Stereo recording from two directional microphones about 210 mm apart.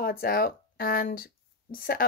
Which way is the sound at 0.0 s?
45° left (ahead or behind).